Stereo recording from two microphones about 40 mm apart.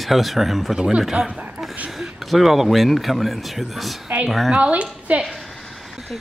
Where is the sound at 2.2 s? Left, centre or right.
Centre.